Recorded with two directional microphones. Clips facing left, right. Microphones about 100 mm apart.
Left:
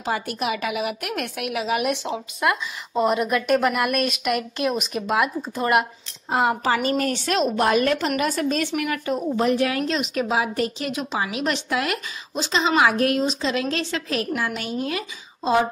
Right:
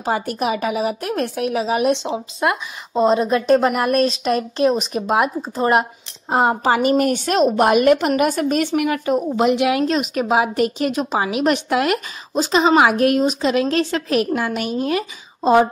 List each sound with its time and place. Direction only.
0.0 s a woman's voice: 35° right (ahead or behind); by 7.2 s 20° right (ahead or behind)
7.2 s a woman's voice: 40° right (ahead or behind)
7.6 s a woman's voice: 15° right (ahead or behind)
8.4 s a woman's voice: 30° right (ahead or behind)
9.8 s a woman's voice: 45° right (ahead or behind)
13.7 s a woman's voice: 45° right (ahead or behind)